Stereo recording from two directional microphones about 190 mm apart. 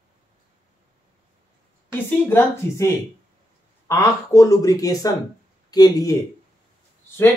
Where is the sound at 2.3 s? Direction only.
15° left (ahead or behind).